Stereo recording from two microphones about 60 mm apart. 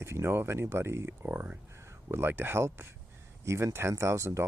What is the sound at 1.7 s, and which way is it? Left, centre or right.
Speech, right.